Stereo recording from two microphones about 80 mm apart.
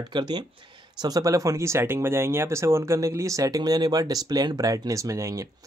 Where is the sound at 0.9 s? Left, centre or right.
Right.